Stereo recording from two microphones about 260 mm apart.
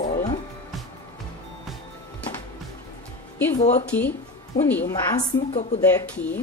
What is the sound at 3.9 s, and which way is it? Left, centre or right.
A woman's voice, centre.